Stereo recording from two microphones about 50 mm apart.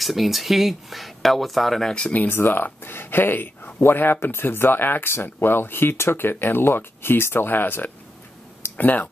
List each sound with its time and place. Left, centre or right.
0.0 s speech: centre
2.1 s speech: left